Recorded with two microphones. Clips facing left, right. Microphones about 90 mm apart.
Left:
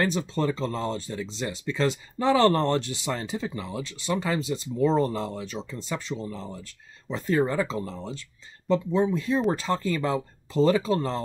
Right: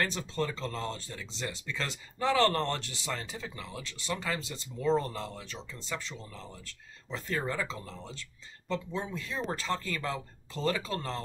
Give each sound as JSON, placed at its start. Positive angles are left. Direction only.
{"t": 0.0, "sound": "speech", "side_deg": 20}
{"t": 4.8, "sound": "speech", "side_deg": 30}